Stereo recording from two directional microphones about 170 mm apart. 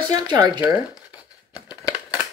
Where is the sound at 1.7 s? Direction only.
25° left (ahead or behind).